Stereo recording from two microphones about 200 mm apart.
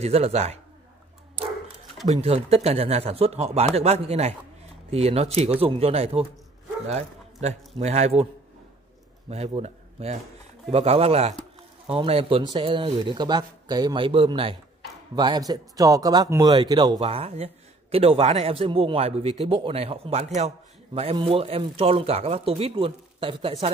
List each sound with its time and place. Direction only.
0.0 s speech: 30° right (ahead or behind)
2.2 s a man's voice: 30° right (ahead or behind)
9.6 s a man's voice: 30° right (ahead or behind)